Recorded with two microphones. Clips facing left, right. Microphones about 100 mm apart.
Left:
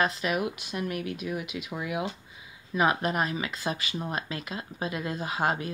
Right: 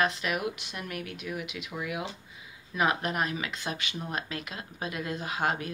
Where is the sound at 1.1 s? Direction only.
40° left (ahead or behind).